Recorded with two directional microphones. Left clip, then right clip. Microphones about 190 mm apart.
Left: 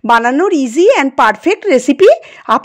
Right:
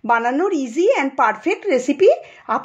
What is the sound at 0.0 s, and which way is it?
A woman's voice, 50° left (ahead or behind).